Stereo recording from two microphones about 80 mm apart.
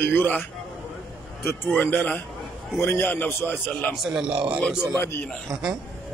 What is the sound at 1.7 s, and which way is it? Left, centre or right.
A man's voice, left.